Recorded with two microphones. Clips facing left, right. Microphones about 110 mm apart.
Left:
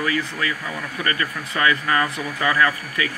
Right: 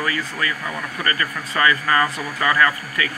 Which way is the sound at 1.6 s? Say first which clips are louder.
Right 2 dB; 10° left (ahead or behind).